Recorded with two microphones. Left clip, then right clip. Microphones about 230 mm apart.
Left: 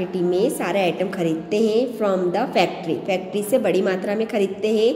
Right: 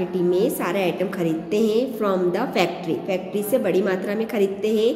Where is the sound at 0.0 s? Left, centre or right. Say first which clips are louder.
Even; centre.